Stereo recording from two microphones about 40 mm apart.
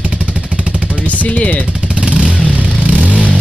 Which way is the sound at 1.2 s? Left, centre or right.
Left.